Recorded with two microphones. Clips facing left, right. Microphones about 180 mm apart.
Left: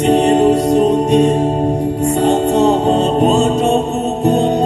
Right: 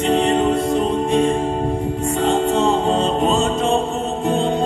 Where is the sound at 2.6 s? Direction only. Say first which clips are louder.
Left 5 dB; 40° left (ahead or behind).